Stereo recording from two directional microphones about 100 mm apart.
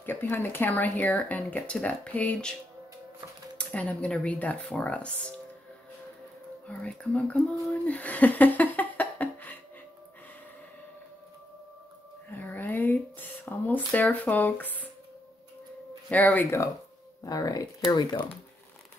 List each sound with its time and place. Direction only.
0.0 s speech: 20° left (ahead or behind)
3.5 s speech: 15° left (ahead or behind)
6.7 s speech: 10° left (ahead or behind)
7.8 s a sound: 15° left (ahead or behind)
12.3 s a sound: 20° left (ahead or behind)
16.1 s speech: 15° left (ahead or behind)
17.2 s speech: 40° left (ahead or behind)
17.8 s speech: 50° left (ahead or behind)